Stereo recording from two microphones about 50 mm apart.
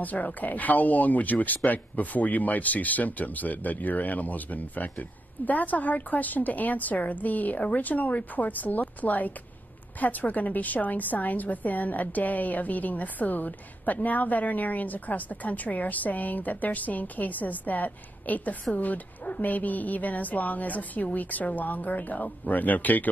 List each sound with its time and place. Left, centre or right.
0.0 s a woman's voice: left